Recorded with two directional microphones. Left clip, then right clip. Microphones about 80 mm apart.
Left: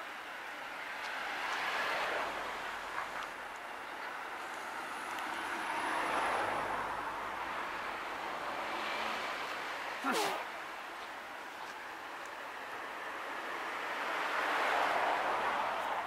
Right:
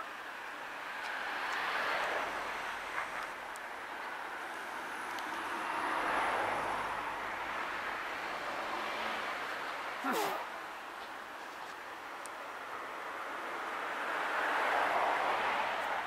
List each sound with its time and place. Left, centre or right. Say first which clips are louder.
1.3 s vehicle: even; left
5.8 s vehicle: right 1 dB; left
8.8 s vehicle: even; left
10.0 s speech: left 1 dB; centre
13.7 s vehicle: even; left
15.2 s a sound: right 1 dB; right